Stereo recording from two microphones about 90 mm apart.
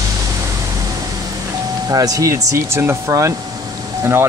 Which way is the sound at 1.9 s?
40° right (ahead or behind).